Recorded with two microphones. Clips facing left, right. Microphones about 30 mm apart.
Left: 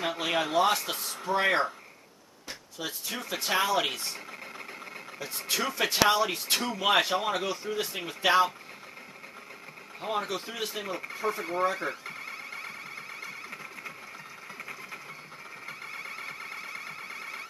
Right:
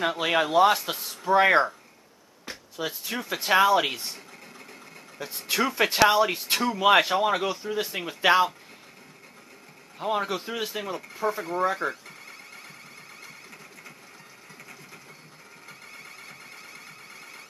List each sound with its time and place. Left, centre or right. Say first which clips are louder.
0.0 s speech: right 5 dB; centre
1.3 s speech: right 6 dB; centre
5.2 s speech: right 4 dB; centre
9.9 s speech: right 4 dB; centre
11.1 s speech: right 3 dB; centre
12.1 s a sound: left 5 dB; centre
15.6 s a sound: left 5 dB; centre